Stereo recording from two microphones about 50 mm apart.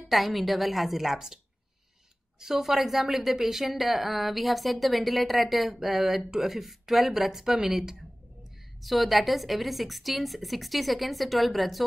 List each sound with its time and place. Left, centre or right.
0.1 s a woman's voice: centre
2.4 s a woman's voice: centre